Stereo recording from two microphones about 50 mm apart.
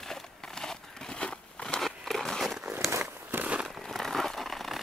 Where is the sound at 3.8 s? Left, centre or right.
Centre.